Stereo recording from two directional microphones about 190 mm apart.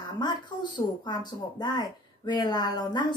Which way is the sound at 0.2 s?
25° left (ahead or behind).